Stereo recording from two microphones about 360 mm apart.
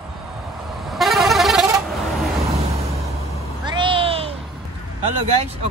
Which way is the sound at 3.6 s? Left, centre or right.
Centre.